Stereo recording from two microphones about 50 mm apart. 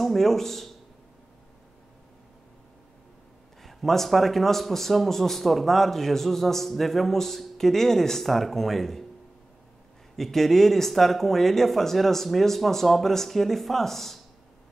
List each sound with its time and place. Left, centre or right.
0.0 s a man's voice: centre
3.6 s a man's voice: centre
10.1 s a man's voice: centre